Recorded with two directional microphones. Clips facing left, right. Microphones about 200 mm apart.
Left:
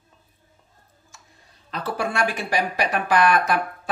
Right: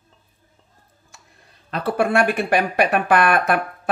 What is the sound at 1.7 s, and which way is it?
Speech, 60° right (ahead or behind).